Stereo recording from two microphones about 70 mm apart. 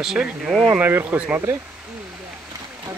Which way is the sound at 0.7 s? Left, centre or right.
Right.